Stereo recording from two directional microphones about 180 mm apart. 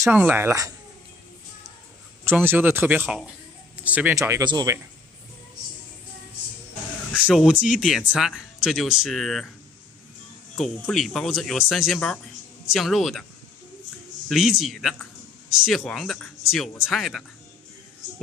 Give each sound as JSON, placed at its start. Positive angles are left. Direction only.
{"t": 0.0, "sound": "speech", "side_deg": -10}
{"t": 2.2, "sound": "speech", "side_deg": -10}
{"t": 7.2, "sound": "speech", "side_deg": -5}
{"t": 10.6, "sound": "speech", "side_deg": 0}
{"t": 14.3, "sound": "speech", "side_deg": 0}